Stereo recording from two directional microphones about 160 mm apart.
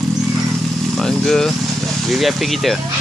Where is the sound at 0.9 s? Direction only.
Centre (ahead or behind).